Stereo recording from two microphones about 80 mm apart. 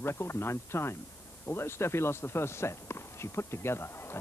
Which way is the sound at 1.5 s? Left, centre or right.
Left.